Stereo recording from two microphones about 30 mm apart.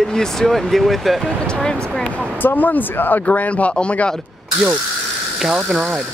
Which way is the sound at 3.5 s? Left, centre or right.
Left.